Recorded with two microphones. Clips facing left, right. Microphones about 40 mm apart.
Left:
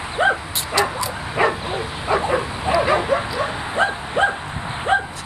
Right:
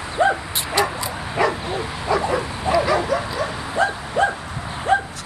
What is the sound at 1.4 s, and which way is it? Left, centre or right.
Bow-wow, left.